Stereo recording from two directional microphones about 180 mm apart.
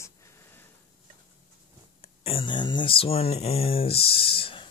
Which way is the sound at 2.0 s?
30° left (ahead or behind).